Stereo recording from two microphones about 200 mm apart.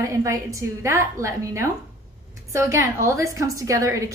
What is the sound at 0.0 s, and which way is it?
A woman's voice, 15° right (ahead or behind).